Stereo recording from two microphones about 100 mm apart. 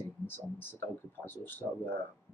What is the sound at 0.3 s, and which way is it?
Speech, 20° left (ahead or behind).